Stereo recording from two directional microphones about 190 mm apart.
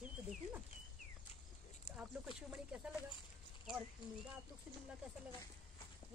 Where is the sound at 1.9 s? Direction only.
5° right (ahead or behind).